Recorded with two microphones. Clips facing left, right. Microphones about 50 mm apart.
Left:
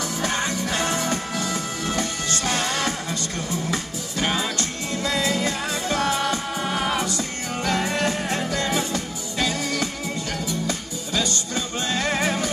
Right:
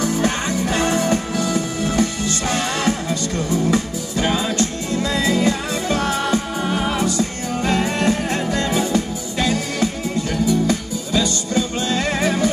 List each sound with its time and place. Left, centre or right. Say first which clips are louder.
0.0 s music: right 5 dB; right
6.6 s music: right 3 dB; centre
7.1 s music: right 6 dB; right
12.2 s music: right 4 dB; left